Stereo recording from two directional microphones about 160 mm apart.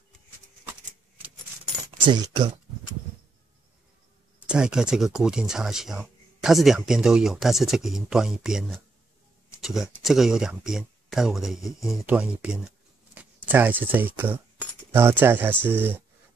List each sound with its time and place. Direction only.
2.0 s speech: 25° right (ahead or behind)
4.4 s speech: 5° right (ahead or behind)